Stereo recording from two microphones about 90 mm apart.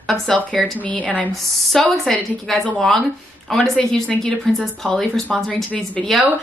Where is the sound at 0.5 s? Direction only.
15° left (ahead or behind).